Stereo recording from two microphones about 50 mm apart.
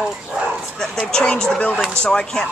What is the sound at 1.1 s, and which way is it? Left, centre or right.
Speech, centre.